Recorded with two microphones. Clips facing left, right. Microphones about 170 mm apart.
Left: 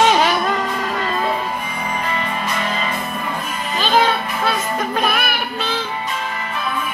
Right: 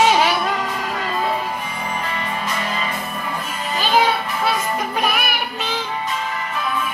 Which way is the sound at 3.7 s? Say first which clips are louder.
Left 1 dB; 10° right (ahead or behind).